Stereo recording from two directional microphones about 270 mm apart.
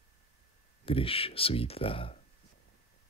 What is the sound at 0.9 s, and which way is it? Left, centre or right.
Speech, centre.